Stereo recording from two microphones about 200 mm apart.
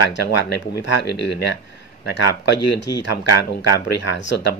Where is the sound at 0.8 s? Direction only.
60° left (ahead or behind).